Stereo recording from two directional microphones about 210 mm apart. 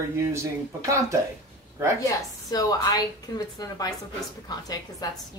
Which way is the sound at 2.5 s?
20° left (ahead or behind).